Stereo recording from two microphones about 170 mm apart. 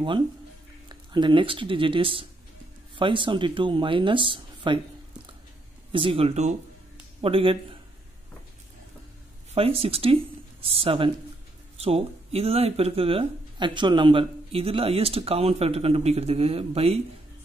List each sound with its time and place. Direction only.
0.8 s speech: 25° right (ahead or behind)
5.9 s speech: 30° right (ahead or behind)
9.5 s speech: 35° right (ahead or behind)